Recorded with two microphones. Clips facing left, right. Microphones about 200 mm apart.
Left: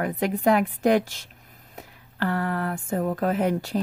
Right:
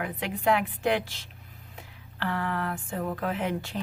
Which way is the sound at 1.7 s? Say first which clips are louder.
Left 6 dB; 40° left (ahead or behind).